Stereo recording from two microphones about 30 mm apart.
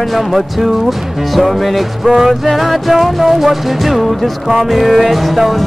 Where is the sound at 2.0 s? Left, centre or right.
Centre.